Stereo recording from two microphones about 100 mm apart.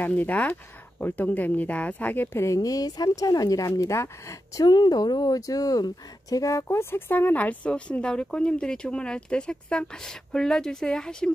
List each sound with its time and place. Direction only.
0.0 s speech: 15° left (ahead or behind)
4.6 s speech: 45° left (ahead or behind); by 11.3 s 5° left (ahead or behind)